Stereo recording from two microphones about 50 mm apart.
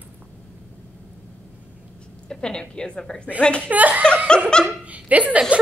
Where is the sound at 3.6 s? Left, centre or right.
Right.